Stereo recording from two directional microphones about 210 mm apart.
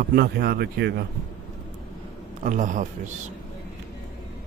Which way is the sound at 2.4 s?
35° right (ahead or behind).